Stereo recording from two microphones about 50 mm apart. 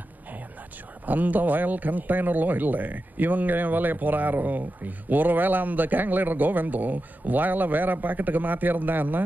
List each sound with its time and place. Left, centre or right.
1.0 s a man's voice: right